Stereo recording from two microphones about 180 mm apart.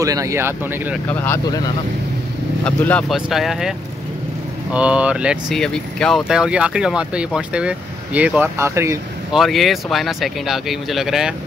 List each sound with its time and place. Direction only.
0.0 s speech: 20° right (ahead or behind)
1.2 s speech: 15° left (ahead or behind); by 3.7 s centre (ahead or behind)
4.7 s speech: 5° right (ahead or behind)
9.3 s speech: centre (ahead or behind)